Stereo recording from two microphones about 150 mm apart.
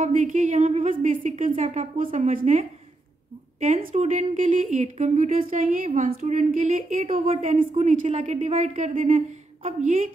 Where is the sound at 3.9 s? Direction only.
50° right (ahead or behind); by 5.8 s 65° right (ahead or behind).